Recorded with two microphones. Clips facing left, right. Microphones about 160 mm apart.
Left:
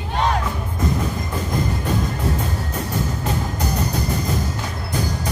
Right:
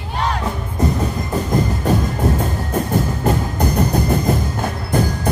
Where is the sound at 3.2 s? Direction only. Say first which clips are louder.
Right 6 dB; 55° right (ahead or behind).